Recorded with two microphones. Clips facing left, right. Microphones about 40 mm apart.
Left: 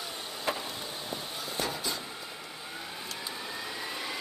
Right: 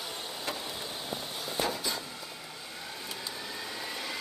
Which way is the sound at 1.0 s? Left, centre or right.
Centre.